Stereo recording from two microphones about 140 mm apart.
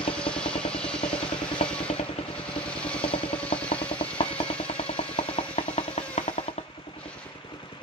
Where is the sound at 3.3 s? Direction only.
40° left (ahead or behind).